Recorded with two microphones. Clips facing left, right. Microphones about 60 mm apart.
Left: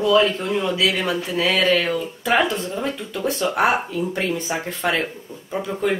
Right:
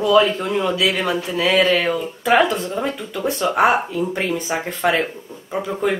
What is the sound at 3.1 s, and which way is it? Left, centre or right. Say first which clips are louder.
Speech: right 2 dB; centre.